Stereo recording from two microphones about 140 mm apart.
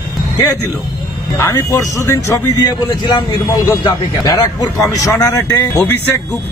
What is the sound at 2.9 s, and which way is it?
A man's voice, 35° left (ahead or behind).